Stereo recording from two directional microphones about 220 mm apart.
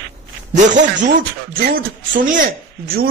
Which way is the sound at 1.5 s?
40° right (ahead or behind).